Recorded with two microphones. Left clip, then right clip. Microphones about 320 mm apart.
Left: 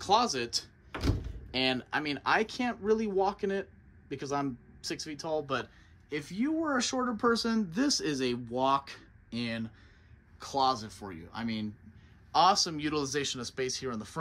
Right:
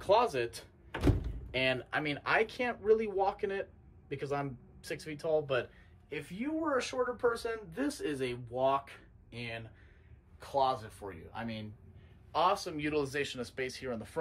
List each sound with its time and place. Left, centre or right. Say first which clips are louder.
0.0 s speech: left 1 dB; centre
1.5 s speech: left 1 dB; centre